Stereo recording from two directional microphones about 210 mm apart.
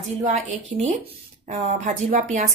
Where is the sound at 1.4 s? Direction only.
35° right (ahead or behind).